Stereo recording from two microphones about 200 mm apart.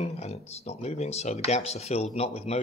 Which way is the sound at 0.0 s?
30° left (ahead or behind).